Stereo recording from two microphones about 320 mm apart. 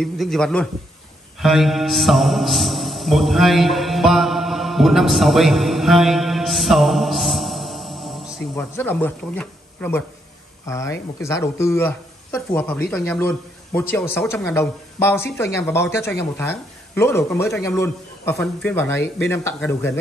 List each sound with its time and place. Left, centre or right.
0.0 s a man's voice: centre